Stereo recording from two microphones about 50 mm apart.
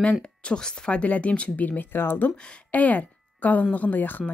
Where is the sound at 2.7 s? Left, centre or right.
Left.